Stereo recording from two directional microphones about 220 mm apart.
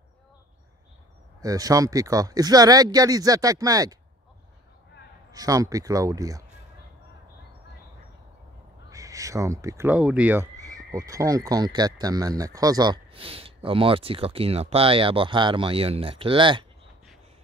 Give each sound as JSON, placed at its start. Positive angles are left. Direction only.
{"t": 1.4, "sound": "speech", "side_deg": -15}
{"t": 5.3, "sound": "speech", "side_deg": -15}
{"t": 8.9, "sound": "speech", "side_deg": -15}